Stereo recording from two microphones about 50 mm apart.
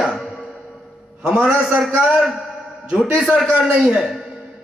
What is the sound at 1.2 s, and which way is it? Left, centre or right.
A man's voice, centre.